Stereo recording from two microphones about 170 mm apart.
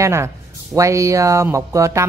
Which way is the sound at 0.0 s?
15° right (ahead or behind).